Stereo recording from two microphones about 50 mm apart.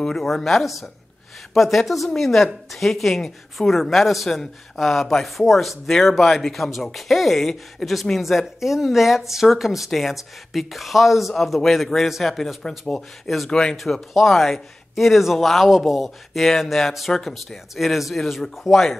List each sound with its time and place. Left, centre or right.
0.0 s speech: centre
12.6 s speech: centre
13.7 s speech: centre